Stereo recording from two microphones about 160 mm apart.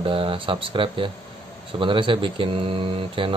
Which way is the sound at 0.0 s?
35° right (ahead or behind).